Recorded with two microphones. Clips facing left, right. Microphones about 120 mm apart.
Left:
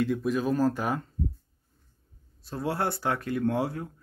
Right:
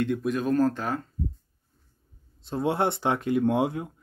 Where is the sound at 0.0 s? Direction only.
Centre (ahead or behind).